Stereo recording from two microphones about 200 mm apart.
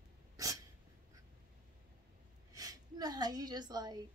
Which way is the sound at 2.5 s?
20° right (ahead or behind).